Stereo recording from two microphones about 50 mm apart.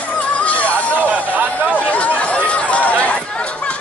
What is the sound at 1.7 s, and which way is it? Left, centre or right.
Chatter, left.